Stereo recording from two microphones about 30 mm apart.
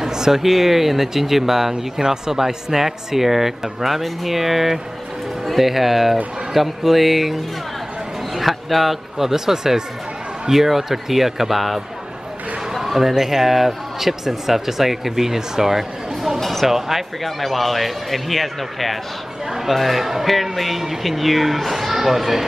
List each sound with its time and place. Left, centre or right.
0.0 s a sound: centre
0.4 s speech: centre
8.4 s speech: centre
9.2 s speech: centre
17.2 s speech: centre
21.7 s speech: centre